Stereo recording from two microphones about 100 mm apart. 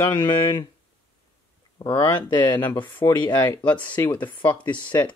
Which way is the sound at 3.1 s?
50° left (ahead or behind).